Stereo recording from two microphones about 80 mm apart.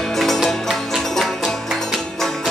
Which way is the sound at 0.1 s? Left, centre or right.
Centre.